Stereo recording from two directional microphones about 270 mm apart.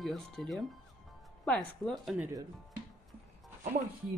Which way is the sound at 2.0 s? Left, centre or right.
Centre.